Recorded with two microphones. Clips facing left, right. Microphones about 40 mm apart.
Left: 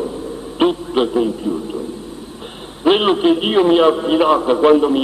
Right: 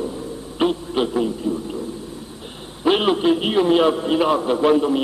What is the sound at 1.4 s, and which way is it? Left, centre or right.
Speech, left.